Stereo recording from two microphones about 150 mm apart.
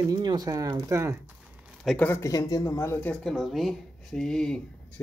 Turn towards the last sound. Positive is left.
turn(degrees=5)  # may be behind; listen again after turning